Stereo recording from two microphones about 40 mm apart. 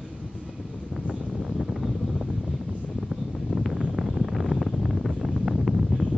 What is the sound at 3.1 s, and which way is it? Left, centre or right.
Wind noise, centre.